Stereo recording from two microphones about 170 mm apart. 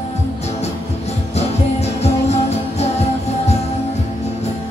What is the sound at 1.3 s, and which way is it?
Music, 40° left (ahead or behind).